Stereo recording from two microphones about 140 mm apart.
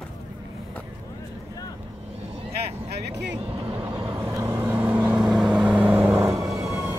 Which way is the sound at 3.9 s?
20° right (ahead or behind).